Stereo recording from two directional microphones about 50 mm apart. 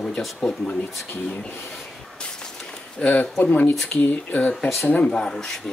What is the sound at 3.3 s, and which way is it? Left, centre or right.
Speech, left.